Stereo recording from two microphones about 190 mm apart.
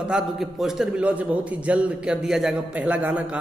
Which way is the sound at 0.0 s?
5° right (ahead or behind).